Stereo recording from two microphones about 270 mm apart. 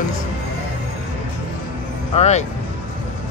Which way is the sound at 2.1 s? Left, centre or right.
Left.